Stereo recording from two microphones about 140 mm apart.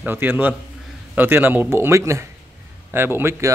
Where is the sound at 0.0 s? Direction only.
15° right (ahead or behind).